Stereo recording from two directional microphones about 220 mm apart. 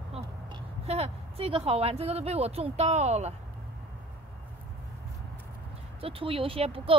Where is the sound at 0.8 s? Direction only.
25° right (ahead or behind).